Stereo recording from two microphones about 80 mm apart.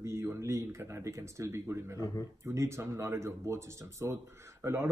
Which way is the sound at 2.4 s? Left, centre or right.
Right.